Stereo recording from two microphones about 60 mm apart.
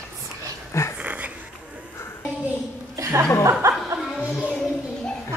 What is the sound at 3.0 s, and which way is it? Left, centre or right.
Chuckle, right.